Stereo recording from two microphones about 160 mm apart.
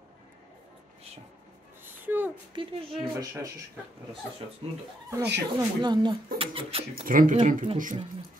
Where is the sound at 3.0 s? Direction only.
20° right (ahead or behind).